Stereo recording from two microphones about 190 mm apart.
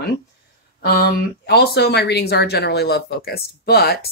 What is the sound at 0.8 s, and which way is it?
Speech, 55° left (ahead or behind).